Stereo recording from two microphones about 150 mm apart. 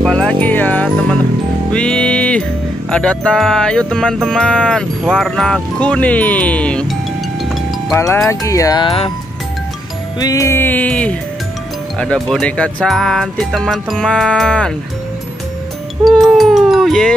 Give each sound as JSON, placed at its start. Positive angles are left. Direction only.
{"t": 0.0, "sound": "music", "side_deg": 5}
{"t": 2.9, "sound": "speech", "side_deg": 5}
{"t": 7.4, "sound": "music", "side_deg": 0}
{"t": 8.3, "sound": "speech", "side_deg": 20}
{"t": 10.1, "sound": "speech", "side_deg": 25}
{"t": 16.1, "sound": "music", "side_deg": 0}